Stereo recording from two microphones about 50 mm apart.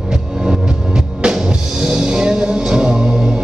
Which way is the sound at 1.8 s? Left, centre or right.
Centre.